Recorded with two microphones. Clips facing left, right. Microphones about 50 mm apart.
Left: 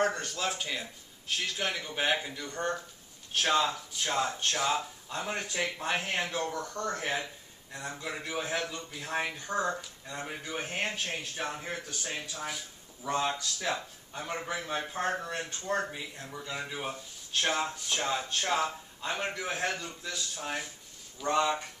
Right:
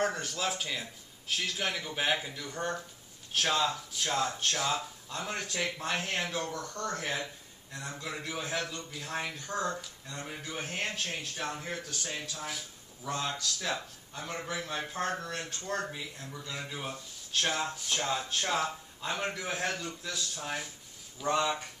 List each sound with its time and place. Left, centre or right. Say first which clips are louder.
0.1 s speech: even; centre
3.3 s speech: left 2 dB; centre
12.4 s speech: left 1 dB; centre
13.1 s speech: left 4 dB; centre